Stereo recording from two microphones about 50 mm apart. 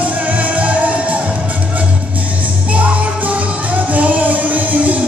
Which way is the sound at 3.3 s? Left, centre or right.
Right.